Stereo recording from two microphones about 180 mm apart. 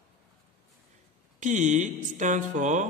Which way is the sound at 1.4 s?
45° right (ahead or behind).